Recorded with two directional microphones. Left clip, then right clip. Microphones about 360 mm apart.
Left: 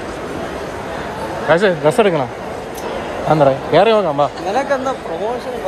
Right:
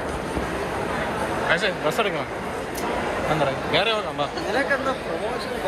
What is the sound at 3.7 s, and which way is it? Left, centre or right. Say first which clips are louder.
Speech: left 11 dB; left.